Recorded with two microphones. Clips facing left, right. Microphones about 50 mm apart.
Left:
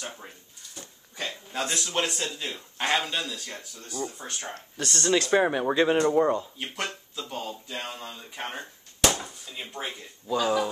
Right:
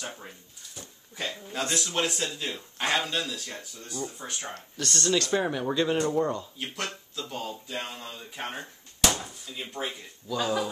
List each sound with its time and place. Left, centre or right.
0.0 s speech: centre
4.7 s speech: centre
6.3 s speech: centre
10.4 s speech: centre